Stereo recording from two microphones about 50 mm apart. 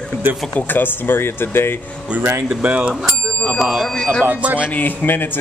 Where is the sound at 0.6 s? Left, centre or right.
Left.